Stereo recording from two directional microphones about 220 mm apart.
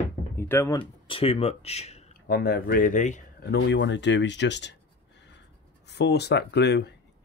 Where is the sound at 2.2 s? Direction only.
45° left (ahead or behind).